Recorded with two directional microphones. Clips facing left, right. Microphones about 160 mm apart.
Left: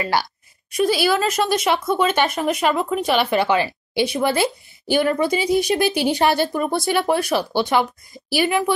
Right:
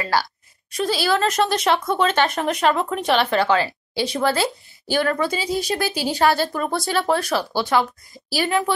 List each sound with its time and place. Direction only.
0.0 s a woman's voice: 20° left (ahead or behind)